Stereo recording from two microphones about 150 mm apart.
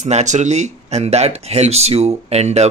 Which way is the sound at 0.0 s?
50° right (ahead or behind).